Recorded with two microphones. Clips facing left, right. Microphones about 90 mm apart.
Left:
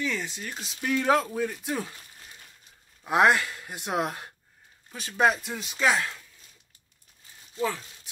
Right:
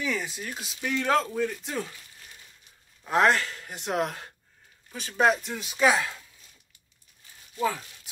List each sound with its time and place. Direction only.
0.0 s speech: 5° right (ahead or behind)
3.0 s speech: 15° left (ahead or behind)
5.8 s speech: 10° right (ahead or behind)